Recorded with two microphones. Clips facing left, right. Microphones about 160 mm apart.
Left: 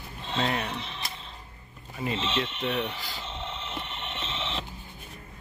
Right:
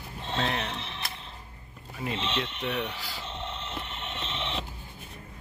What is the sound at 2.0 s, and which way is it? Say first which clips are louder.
Speech: left 2 dB; 5° left (ahead or behind).